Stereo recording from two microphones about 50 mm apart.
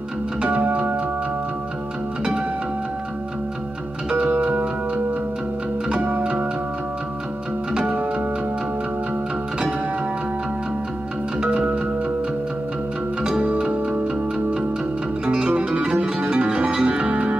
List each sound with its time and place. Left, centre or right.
0.4 s organ: right
4.1 s music: right
11.4 s music: right
13.4 s music: right
15.2 s music: right